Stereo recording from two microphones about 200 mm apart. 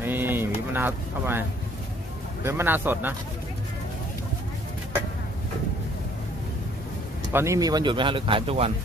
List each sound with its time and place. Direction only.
0.0 s a sound: 10° right (ahead or behind)
2.4 s a man's voice: 10° right (ahead or behind)
7.3 s speech: 15° right (ahead or behind)